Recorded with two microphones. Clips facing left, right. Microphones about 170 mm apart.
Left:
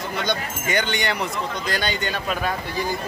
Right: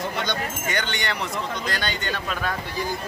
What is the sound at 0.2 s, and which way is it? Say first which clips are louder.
Speech: left 2 dB; 10° left (ahead or behind).